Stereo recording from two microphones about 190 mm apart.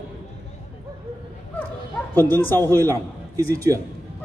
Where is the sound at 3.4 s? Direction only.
15° right (ahead or behind).